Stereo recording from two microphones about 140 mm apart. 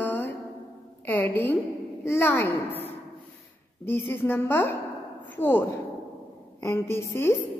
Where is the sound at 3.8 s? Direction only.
15° left (ahead or behind).